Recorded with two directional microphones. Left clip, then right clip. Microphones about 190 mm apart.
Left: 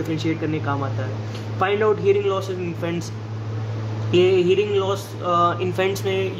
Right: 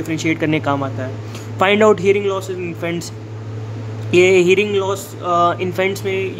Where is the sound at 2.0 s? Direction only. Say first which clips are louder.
Right 3 dB; 25° right (ahead or behind).